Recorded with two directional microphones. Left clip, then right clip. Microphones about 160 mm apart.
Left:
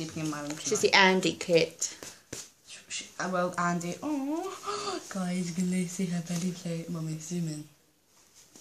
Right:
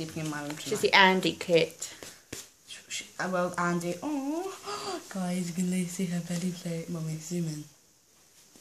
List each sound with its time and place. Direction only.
0.0 s speech: 35° right (ahead or behind)
0.8 s speech: 5° left (ahead or behind)
2.3 s a sound: 15° right (ahead or behind)
2.7 s speech: 40° right (ahead or behind)